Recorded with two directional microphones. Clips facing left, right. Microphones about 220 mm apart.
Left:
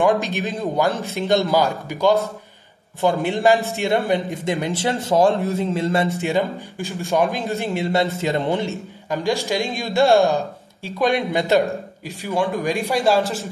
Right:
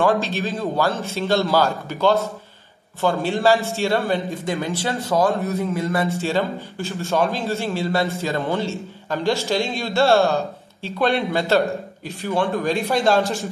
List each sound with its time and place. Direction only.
0.0 s a man's voice: 15° left (ahead or behind)
6.2 s a man's voice: 15° left (ahead or behind)